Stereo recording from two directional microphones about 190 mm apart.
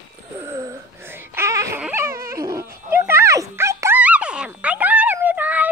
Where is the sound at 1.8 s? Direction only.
10° right (ahead or behind).